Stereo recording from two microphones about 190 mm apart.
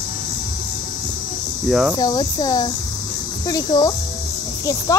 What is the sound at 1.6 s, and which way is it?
Cricket, centre (ahead or behind).